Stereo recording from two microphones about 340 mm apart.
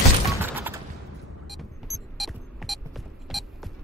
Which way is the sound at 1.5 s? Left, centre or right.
Centre.